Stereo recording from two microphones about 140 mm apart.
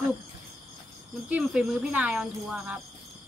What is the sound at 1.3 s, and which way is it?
Speech, 10° right (ahead or behind).